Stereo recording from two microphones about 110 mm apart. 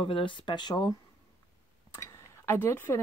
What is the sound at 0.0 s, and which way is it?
Speech, 50° left (ahead or behind).